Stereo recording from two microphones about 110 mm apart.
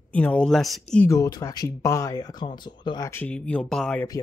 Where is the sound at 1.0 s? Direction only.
30° left (ahead or behind).